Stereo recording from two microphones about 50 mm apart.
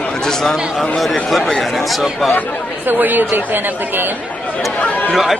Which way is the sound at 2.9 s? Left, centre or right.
Right.